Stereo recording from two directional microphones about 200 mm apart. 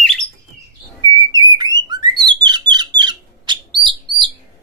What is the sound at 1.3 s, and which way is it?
Bird, 20° right (ahead or behind).